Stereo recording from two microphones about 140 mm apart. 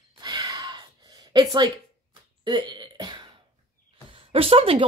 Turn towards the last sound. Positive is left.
turn(degrees=-40)  # may be behind; listen again after turning